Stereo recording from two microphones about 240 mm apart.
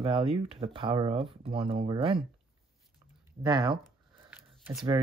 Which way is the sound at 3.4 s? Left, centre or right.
Centre.